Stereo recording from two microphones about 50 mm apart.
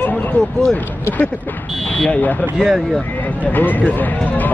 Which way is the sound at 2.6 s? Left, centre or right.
Centre.